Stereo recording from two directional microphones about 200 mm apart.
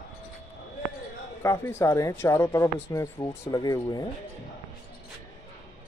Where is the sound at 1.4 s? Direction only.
15° left (ahead or behind).